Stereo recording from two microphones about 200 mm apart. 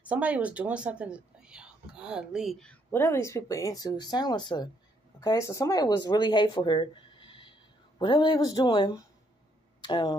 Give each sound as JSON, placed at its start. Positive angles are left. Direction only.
{"t": 0.1, "sound": "speech", "side_deg": -5}